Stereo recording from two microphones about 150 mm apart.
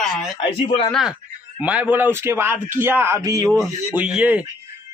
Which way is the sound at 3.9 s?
10° right (ahead or behind).